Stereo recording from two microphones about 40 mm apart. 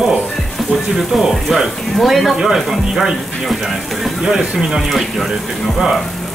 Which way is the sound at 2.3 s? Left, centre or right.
Centre.